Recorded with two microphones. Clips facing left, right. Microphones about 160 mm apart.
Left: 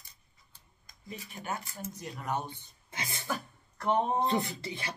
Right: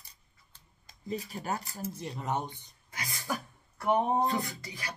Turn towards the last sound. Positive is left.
turn(degrees=25)  # may be behind; listen again after turning